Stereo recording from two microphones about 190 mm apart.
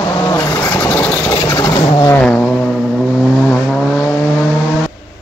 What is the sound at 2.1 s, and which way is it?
Vehicle, 10° left (ahead or behind).